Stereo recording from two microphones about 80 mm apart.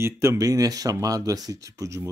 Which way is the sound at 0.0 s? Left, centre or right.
Right.